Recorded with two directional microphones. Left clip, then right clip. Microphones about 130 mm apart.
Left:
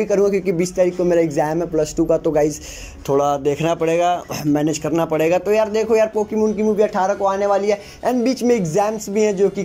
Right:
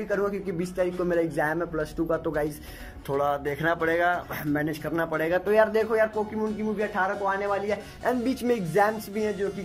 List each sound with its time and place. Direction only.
0.0 s speech: 20° left (ahead or behind)
5.4 s speech: 10° left (ahead or behind)
5.9 s speech: 20° left (ahead or behind)
6.9 s speech: 35° left (ahead or behind)
8.2 s speech: 10° left (ahead or behind)